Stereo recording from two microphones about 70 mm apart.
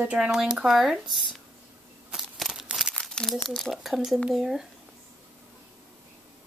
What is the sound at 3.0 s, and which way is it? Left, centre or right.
Crumpling, centre.